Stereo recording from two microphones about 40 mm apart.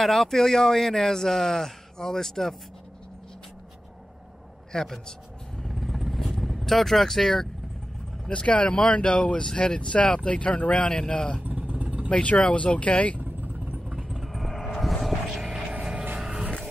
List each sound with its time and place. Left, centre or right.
0.0 s a man's voice: centre
4.7 s a man's voice: centre
5.7 s vehicle: centre
8.3 s speech: left
11.6 s vehicle: right
12.1 s speech: left
13.2 s vehicle: right
13.8 s vehicle: centre
15.8 s vehicle: right